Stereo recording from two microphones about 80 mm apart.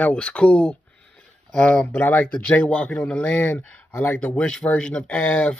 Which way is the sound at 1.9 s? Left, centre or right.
Left.